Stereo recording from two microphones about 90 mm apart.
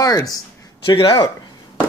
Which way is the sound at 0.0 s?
40° left (ahead or behind).